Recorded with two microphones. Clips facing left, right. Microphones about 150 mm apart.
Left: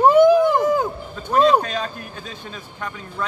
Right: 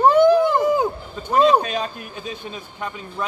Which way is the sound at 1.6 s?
15° right (ahead or behind).